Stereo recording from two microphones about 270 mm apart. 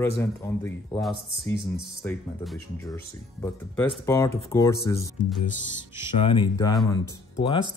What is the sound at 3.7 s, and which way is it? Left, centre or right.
Speech, centre.